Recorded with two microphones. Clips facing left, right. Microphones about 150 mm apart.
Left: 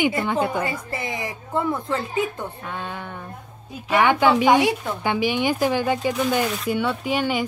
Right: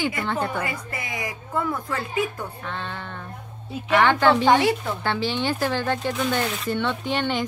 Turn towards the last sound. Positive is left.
turn(degrees=10)  # may be behind; listen again after turning